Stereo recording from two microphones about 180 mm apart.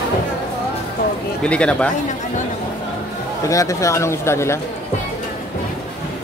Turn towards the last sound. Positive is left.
turn(degrees=15)  # may be behind; listen again after turning